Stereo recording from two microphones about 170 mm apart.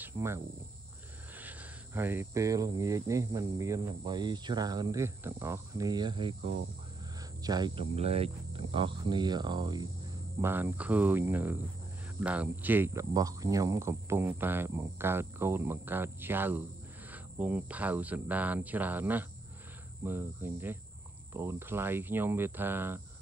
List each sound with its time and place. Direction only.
0.0 s cricket: 15° right (ahead or behind)
1.4 s speech: 10° right (ahead or behind)
10.4 s speech: 15° right (ahead or behind)